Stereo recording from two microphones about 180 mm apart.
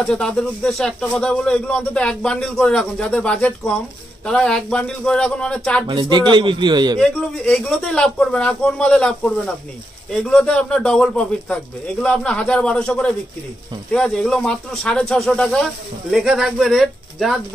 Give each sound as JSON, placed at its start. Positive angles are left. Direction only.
{"t": 0.0, "sound": "speech", "side_deg": 5}
{"t": 5.9, "sound": "a man's voice", "side_deg": -25}
{"t": 7.0, "sound": "speech", "side_deg": 5}